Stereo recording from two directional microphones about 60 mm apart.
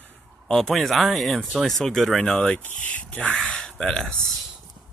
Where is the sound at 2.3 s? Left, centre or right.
Centre.